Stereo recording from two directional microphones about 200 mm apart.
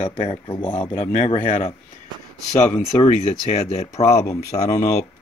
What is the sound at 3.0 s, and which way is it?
Speech, 35° left (ahead or behind).